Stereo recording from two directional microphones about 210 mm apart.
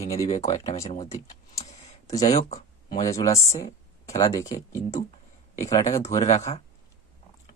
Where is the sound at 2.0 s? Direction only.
15° left (ahead or behind).